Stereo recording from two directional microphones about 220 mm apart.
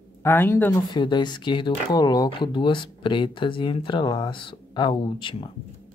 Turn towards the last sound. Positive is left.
turn(degrees=20)  # may be behind; listen again after turning